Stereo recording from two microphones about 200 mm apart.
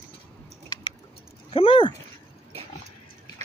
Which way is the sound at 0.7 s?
20° left (ahead or behind).